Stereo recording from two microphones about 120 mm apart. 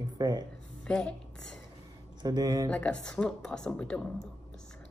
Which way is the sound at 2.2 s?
30° right (ahead or behind).